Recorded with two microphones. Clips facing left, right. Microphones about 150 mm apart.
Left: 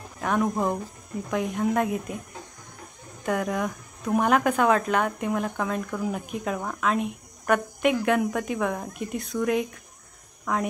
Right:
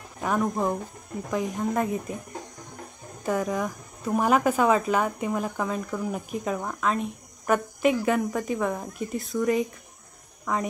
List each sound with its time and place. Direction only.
0.2 s speech: centre (ahead or behind)
3.3 s speech: centre (ahead or behind)